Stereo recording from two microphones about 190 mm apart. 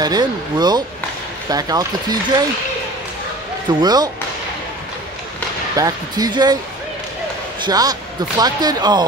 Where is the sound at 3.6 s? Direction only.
20° right (ahead or behind).